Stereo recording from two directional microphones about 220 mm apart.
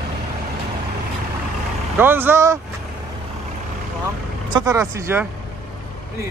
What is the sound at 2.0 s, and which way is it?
Speech, 10° right (ahead or behind).